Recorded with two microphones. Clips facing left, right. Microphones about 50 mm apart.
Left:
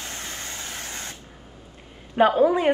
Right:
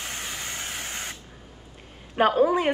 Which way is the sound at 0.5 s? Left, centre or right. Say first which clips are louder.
Right 1 dB; right.